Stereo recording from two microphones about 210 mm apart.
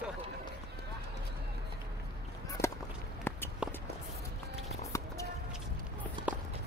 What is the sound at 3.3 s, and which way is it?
Walk, 10° left (ahead or behind).